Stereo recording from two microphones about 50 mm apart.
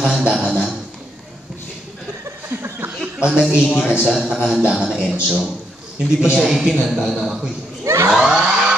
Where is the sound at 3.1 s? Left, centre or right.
Right.